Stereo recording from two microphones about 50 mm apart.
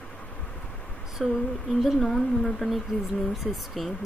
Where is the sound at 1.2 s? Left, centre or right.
Centre.